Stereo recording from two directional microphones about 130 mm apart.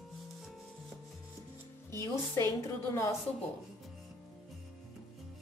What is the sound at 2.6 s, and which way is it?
Speech, 25° left (ahead or behind).